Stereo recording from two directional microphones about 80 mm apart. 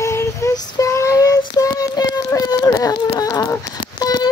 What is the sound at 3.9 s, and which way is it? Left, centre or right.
Horse, left.